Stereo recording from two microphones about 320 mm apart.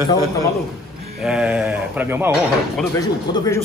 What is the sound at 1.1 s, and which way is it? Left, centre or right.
A man's voice, centre.